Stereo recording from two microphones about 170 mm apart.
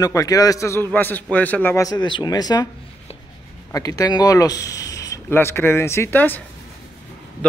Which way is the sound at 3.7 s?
20° left (ahead or behind).